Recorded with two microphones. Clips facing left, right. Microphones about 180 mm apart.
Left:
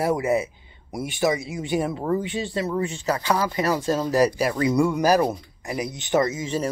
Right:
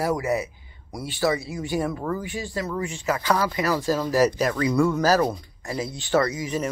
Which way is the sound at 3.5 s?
25° left (ahead or behind).